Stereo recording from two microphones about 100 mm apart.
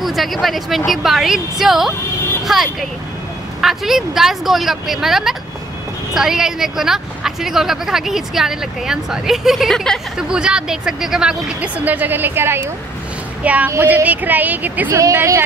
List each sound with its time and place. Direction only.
0.0 s speech: centre (ahead or behind); by 15.0 s 15° right (ahead or behind)
15.0 s speech: 30° right (ahead or behind)